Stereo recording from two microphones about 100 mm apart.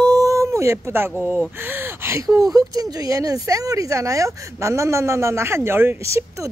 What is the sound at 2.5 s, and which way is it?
Speech, 40° right (ahead or behind).